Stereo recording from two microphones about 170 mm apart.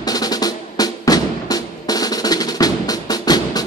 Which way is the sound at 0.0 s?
20° left (ahead or behind).